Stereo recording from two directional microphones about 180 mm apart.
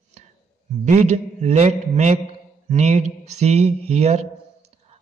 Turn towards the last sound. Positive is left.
turn(degrees=-35)  # may be behind; listen again after turning